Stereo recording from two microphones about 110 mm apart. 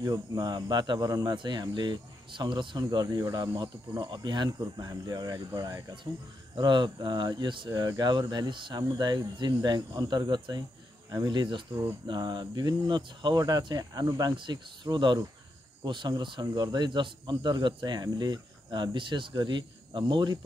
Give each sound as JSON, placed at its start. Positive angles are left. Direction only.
{"t": 0.0, "sound": "speech", "side_deg": -35}
{"t": 6.5, "sound": "speech", "side_deg": -45}